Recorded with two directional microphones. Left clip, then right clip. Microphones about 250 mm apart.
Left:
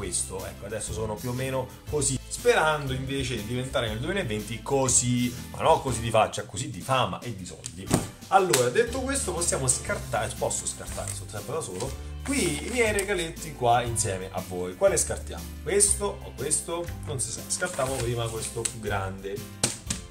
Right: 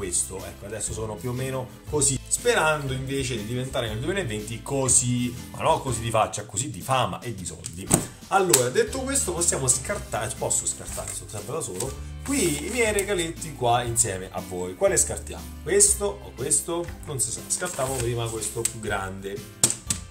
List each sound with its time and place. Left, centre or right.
0.0 s speech: centre